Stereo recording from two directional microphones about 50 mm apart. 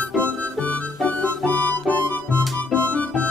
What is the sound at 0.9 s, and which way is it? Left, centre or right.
Music, centre.